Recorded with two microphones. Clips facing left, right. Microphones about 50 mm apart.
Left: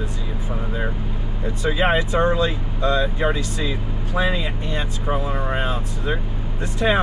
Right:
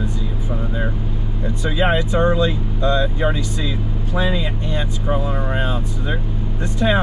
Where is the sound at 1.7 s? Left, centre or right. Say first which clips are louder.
Right 1 dB; left.